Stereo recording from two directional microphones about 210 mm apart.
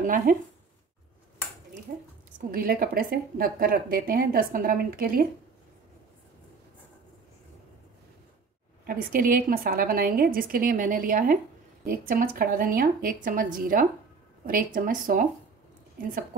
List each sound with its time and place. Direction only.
0.0 s speech: 40° right (ahead or behind)
2.5 s a woman's voice: 45° right (ahead or behind)
8.8 s a woman's voice: 40° right (ahead or behind)